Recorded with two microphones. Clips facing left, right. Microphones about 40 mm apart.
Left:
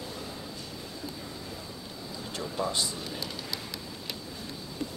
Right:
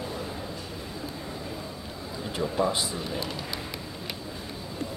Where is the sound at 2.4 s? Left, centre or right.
Centre.